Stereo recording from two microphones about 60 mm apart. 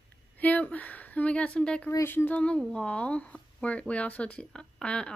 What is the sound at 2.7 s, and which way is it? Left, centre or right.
Speech, centre.